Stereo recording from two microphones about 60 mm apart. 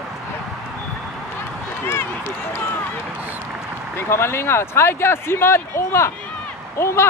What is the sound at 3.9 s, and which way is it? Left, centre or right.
Speech, left.